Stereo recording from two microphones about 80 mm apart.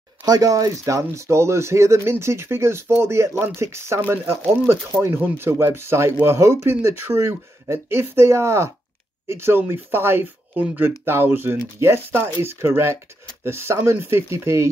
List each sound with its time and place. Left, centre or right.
0.2 s speech: right